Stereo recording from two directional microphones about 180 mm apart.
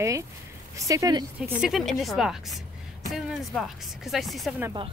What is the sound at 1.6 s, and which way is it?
Speech, centre (ahead or behind).